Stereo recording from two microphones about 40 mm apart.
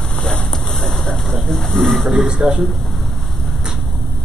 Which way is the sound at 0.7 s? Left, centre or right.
Centre.